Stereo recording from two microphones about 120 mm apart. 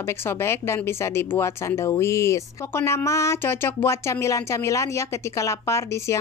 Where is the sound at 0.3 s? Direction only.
20° left (ahead or behind).